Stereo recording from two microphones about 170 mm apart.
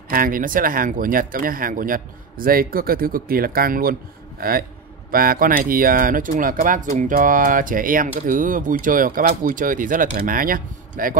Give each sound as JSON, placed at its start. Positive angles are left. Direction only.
{"t": 0.1, "sound": "speech", "side_deg": -55}